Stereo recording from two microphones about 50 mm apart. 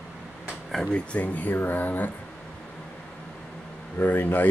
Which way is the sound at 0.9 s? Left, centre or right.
Left.